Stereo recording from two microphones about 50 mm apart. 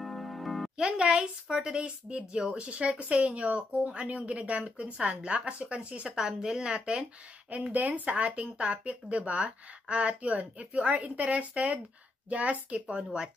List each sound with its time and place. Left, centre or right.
0.0 s music: centre
0.7 s speech: centre
6.0 s speech: centre
7.5 s speech: right